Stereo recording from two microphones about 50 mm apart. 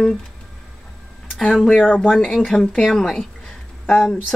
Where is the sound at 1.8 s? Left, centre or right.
Left.